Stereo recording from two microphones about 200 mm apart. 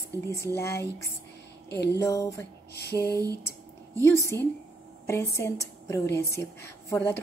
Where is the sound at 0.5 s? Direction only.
15° left (ahead or behind).